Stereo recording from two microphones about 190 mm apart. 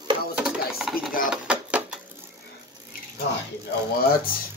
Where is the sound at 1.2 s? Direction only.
5° right (ahead or behind).